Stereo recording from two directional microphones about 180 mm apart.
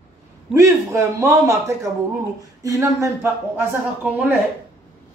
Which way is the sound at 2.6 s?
15° right (ahead or behind).